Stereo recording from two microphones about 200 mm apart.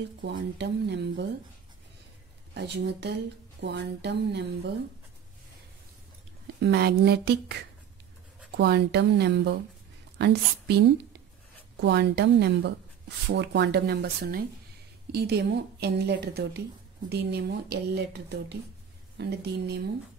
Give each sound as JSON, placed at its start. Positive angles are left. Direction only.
{"t": 0.2, "sound": "a woman's voice", "side_deg": -60}
{"t": 2.5, "sound": "a woman's voice", "side_deg": -55}
{"t": 6.6, "sound": "a woman's voice", "side_deg": -55}
{"t": 8.5, "sound": "a woman's voice", "side_deg": -55}